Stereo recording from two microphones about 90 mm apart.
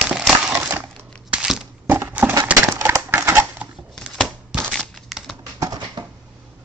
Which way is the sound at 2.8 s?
25° right (ahead or behind).